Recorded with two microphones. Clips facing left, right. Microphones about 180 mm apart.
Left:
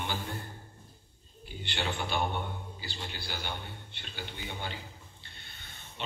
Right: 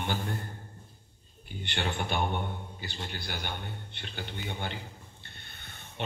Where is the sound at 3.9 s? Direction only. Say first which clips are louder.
Right 2 dB; 55° right (ahead or behind).